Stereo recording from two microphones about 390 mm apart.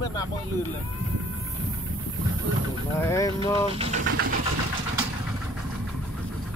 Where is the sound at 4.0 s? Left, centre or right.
Right.